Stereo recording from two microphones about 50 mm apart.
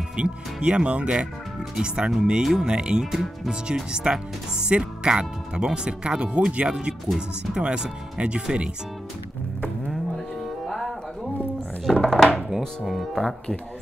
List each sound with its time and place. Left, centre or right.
0.1 s speech: centre
10.1 s music: centre
12.0 s music: centre
12.4 s speech: centre
12.9 s speech: centre